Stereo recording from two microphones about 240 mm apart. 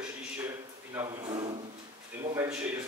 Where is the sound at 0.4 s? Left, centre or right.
Centre.